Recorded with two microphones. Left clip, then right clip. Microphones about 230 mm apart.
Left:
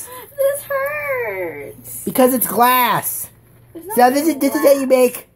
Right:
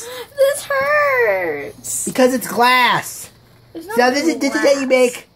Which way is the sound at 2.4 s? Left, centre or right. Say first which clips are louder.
Right 1 dB; centre.